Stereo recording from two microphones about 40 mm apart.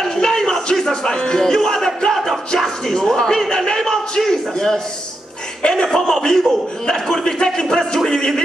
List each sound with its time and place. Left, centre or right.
0.2 s music: centre
2.1 s a sound: centre
5.7 s a man's voice: centre